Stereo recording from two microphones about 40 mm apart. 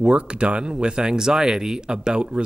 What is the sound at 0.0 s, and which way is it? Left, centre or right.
Speech, right.